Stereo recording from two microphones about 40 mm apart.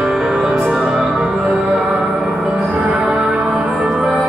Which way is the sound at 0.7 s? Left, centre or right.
Right.